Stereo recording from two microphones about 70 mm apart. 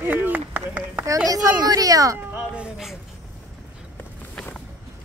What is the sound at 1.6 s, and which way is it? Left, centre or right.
Speech, right.